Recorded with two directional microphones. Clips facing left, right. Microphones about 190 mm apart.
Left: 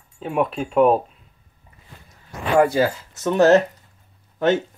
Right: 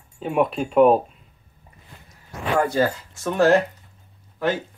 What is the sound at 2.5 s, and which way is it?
Speech, 10° left (ahead or behind).